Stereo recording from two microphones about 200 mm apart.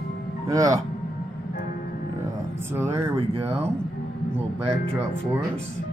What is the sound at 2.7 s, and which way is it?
Speech, 10° right (ahead or behind).